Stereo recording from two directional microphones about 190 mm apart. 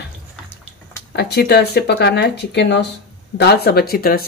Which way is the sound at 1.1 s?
60° left (ahead or behind).